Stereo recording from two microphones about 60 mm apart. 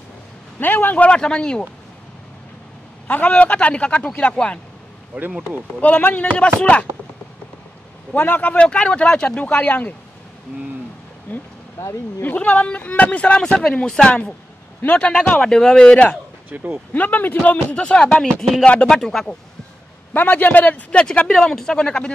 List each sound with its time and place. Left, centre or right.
0.6 s speech: left; by 1.6 s centre
3.1 s speech: left
5.1 s speech: right
5.8 s speech: left
8.1 s speech: left
11.3 s speech: left
16.4 s speech: right
16.9 s speech: left; by 19.2 s centre
20.1 s speech: left
21.3 s speech: centre